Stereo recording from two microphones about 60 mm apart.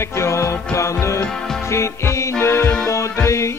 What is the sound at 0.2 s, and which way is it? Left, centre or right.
Music, left.